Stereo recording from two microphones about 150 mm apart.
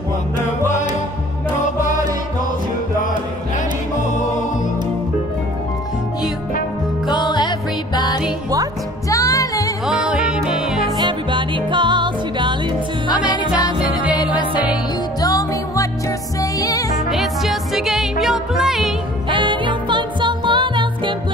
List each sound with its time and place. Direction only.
7.1 s music: 30° left (ahead or behind)
9.8 s music: 5° right (ahead or behind)
11.0 s music: 30° right (ahead or behind)
13.5 s music: 5° right (ahead or behind)
14.6 s music: 25° left (ahead or behind)
16.9 s music: centre (ahead or behind)
19.2 s music: 30° right (ahead or behind)